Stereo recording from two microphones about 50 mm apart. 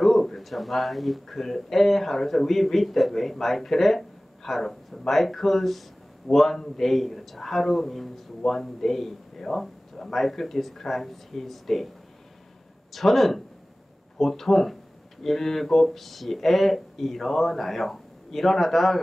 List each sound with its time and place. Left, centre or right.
0.0 s speech: centre
12.9 s speech: centre